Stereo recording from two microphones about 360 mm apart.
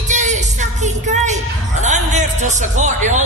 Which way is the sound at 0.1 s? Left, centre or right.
Centre.